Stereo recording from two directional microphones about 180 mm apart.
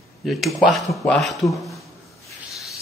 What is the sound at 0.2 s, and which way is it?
A man's voice, centre (ahead or behind).